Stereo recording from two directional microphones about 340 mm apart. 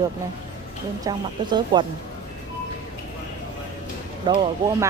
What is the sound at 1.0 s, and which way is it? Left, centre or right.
Speech, centre.